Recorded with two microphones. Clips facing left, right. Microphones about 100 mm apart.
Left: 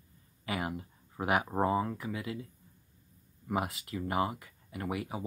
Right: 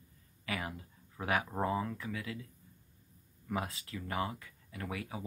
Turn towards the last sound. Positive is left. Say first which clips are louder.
# left 5 dB
turn(degrees=20)  # may be behind; listen again after turning